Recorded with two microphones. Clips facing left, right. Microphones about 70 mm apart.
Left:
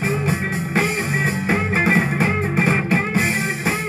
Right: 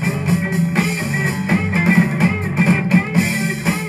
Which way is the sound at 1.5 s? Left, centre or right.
Left.